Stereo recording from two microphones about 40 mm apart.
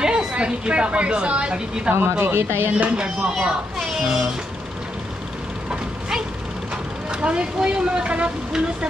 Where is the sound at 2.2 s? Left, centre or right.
Right.